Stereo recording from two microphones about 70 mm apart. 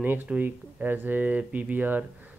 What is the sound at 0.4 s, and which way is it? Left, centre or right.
Speech, right.